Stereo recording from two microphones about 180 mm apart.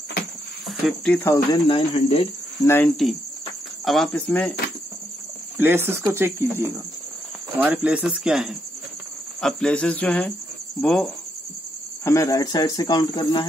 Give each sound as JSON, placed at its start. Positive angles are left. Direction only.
{"t": 0.7, "sound": "speech", "side_deg": 0}
{"t": 1.2, "sound": "speech", "side_deg": 15}
{"t": 1.7, "sound": "speech", "side_deg": 35}
{"t": 2.6, "sound": "speech", "side_deg": 15}
{"t": 3.8, "sound": "speech", "side_deg": 0}
{"t": 5.6, "sound": "speech", "side_deg": -10}
{"t": 12.0, "sound": "speech", "side_deg": 15}